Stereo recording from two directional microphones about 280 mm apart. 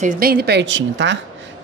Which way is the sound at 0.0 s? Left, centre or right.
Right.